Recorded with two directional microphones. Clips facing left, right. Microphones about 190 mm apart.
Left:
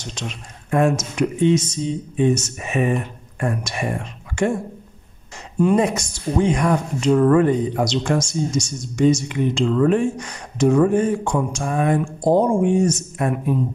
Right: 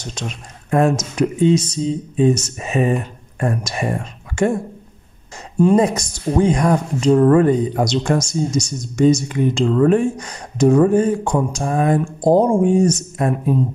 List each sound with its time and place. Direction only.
0.7 s speech: 35° right (ahead or behind)
5.6 s speech: 35° right (ahead or behind)